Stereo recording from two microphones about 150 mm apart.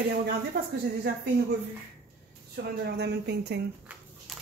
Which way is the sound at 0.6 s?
90° right.